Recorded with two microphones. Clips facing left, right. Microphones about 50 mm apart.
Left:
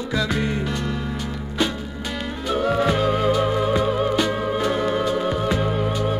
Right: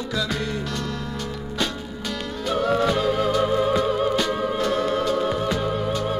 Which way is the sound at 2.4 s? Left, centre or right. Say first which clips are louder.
Left 1 dB; centre.